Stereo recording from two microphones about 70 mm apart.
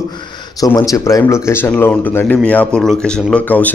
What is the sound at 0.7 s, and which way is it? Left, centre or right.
Speech, left.